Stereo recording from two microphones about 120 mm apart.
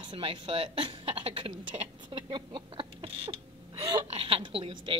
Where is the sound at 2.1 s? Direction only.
45° right (ahead or behind).